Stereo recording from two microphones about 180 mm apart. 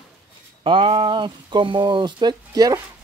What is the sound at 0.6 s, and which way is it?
Speech, 30° right (ahead or behind).